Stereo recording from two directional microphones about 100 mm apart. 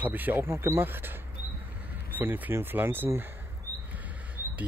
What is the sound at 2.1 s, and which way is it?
Speech, 20° right (ahead or behind).